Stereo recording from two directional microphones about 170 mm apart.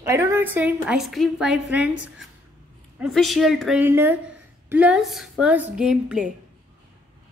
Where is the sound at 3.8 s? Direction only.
10° right (ahead or behind).